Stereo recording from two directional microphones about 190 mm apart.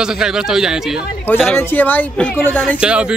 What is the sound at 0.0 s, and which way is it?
Speech, 5° right (ahead or behind).